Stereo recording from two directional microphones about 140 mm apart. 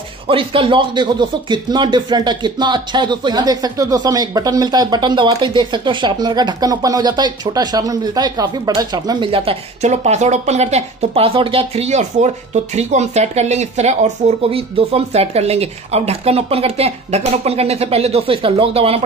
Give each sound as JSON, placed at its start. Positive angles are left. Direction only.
{"t": 0.3, "sound": "speech", "side_deg": -40}